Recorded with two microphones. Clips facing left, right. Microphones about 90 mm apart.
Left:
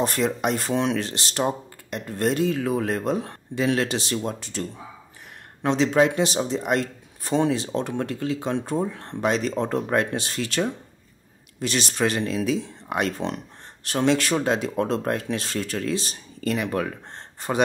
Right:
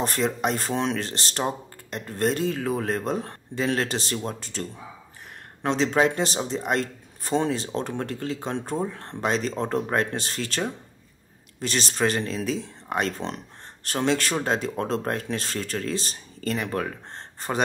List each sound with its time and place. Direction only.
0.0 s speech: 35° right (ahead or behind)
11.6 s speech: 35° right (ahead or behind)